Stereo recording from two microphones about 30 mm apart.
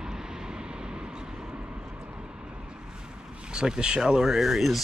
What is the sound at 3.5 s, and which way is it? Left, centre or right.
Speech, right.